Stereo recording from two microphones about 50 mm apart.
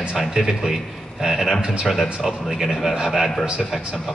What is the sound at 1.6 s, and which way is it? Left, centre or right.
Speech, centre.